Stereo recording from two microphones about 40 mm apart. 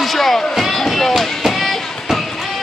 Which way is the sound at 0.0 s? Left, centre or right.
Centre.